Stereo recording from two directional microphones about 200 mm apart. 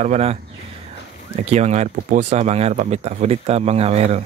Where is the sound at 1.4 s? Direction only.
35° right (ahead or behind).